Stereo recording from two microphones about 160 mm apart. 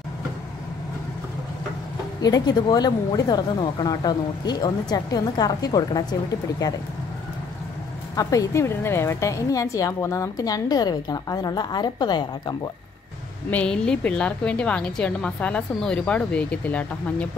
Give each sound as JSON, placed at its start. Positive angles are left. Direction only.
{"t": 2.2, "sound": "a woman's voice", "side_deg": 25}
{"t": 8.2, "sound": "a woman's voice", "side_deg": 20}
{"t": 13.5, "sound": "a woman's voice", "side_deg": 5}